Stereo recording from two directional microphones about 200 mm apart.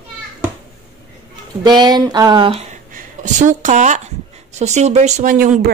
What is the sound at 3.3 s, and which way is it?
Speech, 40° right (ahead or behind).